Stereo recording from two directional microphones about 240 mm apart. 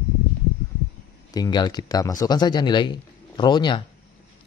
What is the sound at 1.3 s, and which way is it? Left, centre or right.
Speech, centre.